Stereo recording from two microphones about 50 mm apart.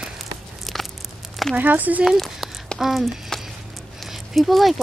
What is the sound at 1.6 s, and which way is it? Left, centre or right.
Speech, right.